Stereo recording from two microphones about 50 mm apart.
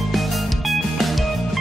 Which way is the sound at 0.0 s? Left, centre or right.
Centre.